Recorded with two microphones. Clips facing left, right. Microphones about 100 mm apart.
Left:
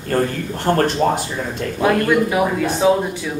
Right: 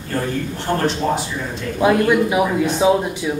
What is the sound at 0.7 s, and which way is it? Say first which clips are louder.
Speech: left 5 dB; 50° left (ahead or behind).